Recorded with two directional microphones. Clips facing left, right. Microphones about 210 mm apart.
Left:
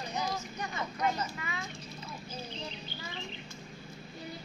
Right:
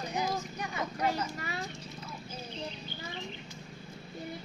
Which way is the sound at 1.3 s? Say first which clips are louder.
Right 2 dB; 40° right (ahead or behind).